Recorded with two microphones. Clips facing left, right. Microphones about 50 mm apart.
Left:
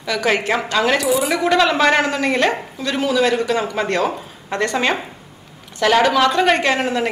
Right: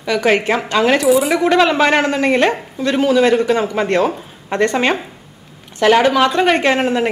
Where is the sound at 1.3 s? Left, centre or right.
Centre.